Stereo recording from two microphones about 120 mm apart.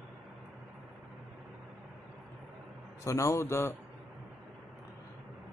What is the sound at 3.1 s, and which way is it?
Speech, 25° left (ahead or behind).